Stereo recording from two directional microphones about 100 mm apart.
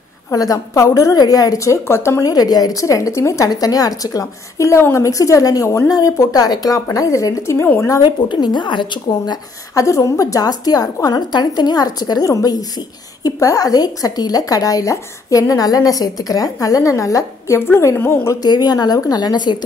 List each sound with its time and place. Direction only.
0.3 s a woman's voice: 35° left (ahead or behind)
7.9 s a woman's voice: 45° left (ahead or behind)
18.5 s a woman's voice: 40° left (ahead or behind)